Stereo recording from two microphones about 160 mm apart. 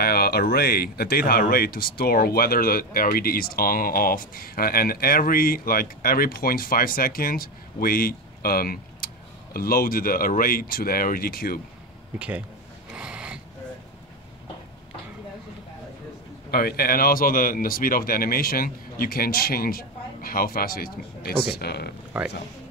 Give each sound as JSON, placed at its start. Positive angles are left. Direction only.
{"t": 0.0, "sound": "speech", "side_deg": 75}
{"t": 12.2, "sound": "speech", "side_deg": -10}
{"t": 12.9, "sound": "a sound", "side_deg": -5}
{"t": 16.4, "sound": "speech", "side_deg": 75}
{"t": 22.1, "sound": "speech", "side_deg": -5}